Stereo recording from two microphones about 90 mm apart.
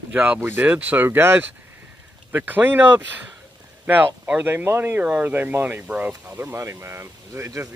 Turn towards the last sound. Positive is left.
turn(degrees=-30)  # may be behind; listen again after turning